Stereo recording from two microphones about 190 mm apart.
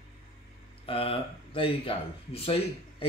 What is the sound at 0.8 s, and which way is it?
Speech, 30° left (ahead or behind).